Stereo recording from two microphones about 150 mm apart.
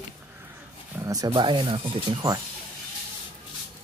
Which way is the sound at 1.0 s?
25° right (ahead or behind).